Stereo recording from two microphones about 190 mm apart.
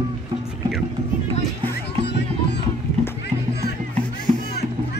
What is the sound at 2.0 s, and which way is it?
Music, 60° left (ahead or behind).